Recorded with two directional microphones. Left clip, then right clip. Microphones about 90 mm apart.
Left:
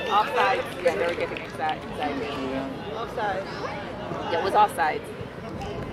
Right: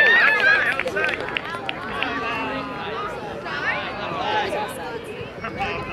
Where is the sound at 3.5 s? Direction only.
20° right (ahead or behind).